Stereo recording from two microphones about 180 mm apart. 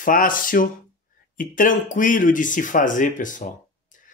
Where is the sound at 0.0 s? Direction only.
50° left (ahead or behind).